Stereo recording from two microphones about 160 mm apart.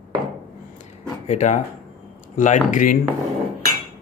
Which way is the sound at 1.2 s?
45° left (ahead or behind).